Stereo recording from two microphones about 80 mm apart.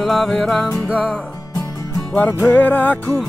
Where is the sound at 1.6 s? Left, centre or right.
Left.